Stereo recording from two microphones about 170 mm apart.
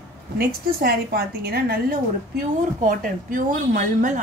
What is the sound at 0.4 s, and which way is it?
A woman's voice, 60° right (ahead or behind).